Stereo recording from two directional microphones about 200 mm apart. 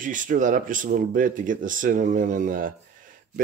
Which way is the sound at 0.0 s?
40° right (ahead or behind).